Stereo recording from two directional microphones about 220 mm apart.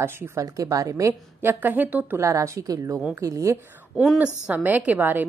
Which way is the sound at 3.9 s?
5° left (ahead or behind).